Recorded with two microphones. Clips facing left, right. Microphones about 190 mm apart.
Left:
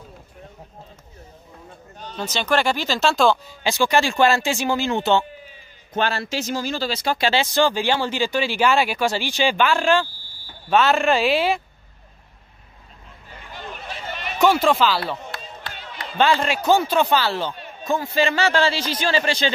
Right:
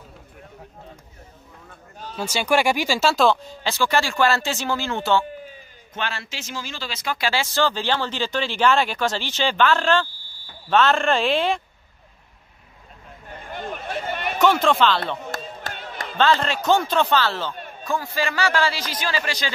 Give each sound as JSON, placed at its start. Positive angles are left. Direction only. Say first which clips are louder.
{"t": 2.0, "sound": "speech", "louder": "right 1 dB", "side_deg": -5}
{"t": 3.6, "sound": "speech", "louder": "left 3 dB", "side_deg": 15}
{"t": 5.9, "sound": "speech", "louder": "left 7 dB", "side_deg": 35}
{"t": 13.4, "sound": "a sound", "louder": "right 4 dB", "side_deg": -50}
{"t": 14.4, "sound": "speech", "louder": "left 1 dB", "side_deg": 10}
{"t": 15.3, "sound": "a sound", "louder": "right 3 dB", "side_deg": -50}
{"t": 16.2, "sound": "a man's voice", "louder": "left 1 dB", "side_deg": 10}